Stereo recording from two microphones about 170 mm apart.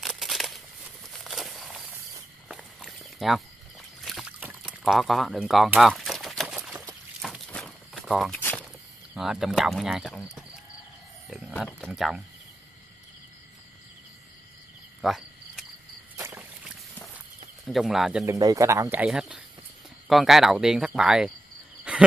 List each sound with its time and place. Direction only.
0.0 s a sound: centre (ahead or behind)
2.4 s walk: 5° right (ahead or behind)
4.0 s a sound: centre (ahead or behind)
8.4 s walk: 10° left (ahead or behind)
9.1 s speech: 5° right (ahead or behind)
15.0 s cricket: centre (ahead or behind)
16.2 s rowboat: 15° right (ahead or behind)
17.6 s speech: centre (ahead or behind)
18.2 s speech: 20° right (ahead or behind); by 21.3 s 5° right (ahead or behind)
21.9 s a sound: 5° right (ahead or behind)